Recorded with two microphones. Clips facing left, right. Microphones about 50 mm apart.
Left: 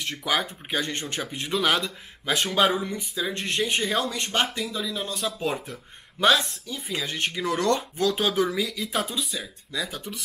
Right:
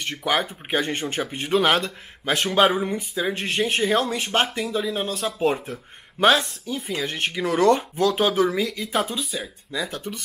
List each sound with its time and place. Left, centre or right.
0.2 s speech: centre
2.7 s speech: right
3.3 s speech: centre
9.4 s speech: centre
9.8 s speech: centre